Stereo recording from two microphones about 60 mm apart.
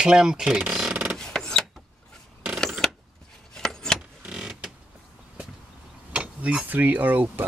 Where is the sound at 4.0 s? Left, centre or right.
Centre.